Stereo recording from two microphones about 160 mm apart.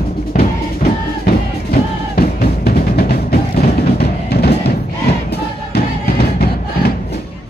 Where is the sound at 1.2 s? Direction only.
70° left (ahead or behind); by 4.7 s 85° left.